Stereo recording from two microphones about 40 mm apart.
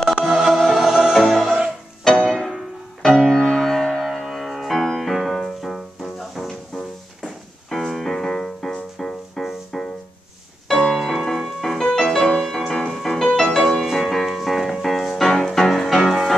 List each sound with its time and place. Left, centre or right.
0.2 s music: centre
0.7 s music: centre
1.1 s music: centre
2.1 s music: centre
7.7 s music: centre
10.9 s music: centre